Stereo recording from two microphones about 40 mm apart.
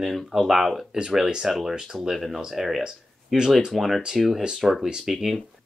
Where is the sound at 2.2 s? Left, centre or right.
Centre.